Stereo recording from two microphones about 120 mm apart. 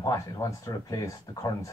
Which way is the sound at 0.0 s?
30° left (ahead or behind).